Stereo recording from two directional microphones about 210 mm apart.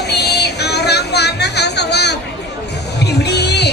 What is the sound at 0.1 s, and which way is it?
Music, 50° left (ahead or behind).